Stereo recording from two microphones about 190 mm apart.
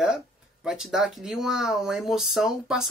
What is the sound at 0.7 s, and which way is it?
Speech, 5° right (ahead or behind).